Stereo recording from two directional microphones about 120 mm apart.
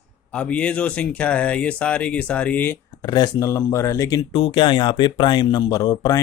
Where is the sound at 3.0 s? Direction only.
35° left (ahead or behind).